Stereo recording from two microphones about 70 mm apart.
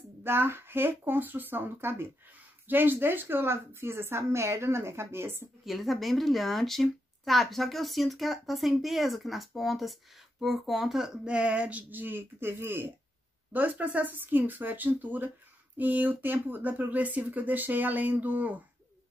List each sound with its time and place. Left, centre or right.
0.2 s a woman's voice: right
5.7 s a woman's voice: centre
11.2 s speech: centre; by 12.8 s right
13.5 s speech: right